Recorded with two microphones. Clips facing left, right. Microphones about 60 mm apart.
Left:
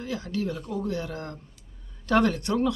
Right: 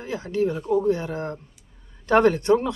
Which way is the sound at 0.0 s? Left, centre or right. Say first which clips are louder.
Right 6 dB; right.